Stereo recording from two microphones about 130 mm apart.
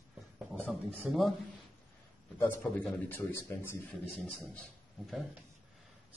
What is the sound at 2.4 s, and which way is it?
A man's voice, 15° left (ahead or behind).